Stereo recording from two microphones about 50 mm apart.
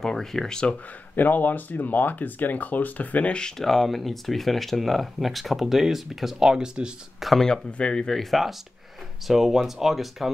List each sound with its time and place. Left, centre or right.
0.0 s speech: centre
1.1 s speech: left
3.3 s speech: centre
3.6 s speech: centre
7.2 s speech: centre